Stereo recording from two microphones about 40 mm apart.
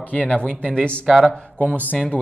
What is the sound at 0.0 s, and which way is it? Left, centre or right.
Speech, left.